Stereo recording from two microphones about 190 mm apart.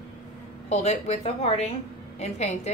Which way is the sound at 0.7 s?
35° left (ahead or behind).